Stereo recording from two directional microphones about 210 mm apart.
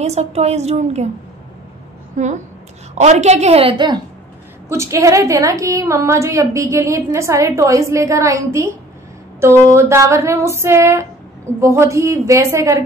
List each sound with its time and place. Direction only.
0.0 s a woman's voice: 30° right (ahead or behind)
2.1 s a woman's voice: 35° right (ahead or behind); by 12.8 s 15° right (ahead or behind)